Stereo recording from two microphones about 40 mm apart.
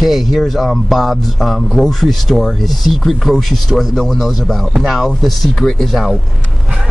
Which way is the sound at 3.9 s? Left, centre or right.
Centre.